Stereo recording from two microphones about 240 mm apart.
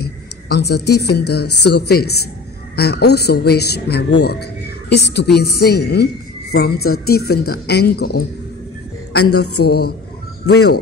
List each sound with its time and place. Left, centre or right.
0.0 s a woman's voice: left
9.2 s a woman's voice: left
9.7 s a woman's voice: left